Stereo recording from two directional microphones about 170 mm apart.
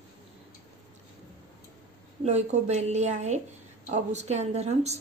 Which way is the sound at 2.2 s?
40° right (ahead or behind).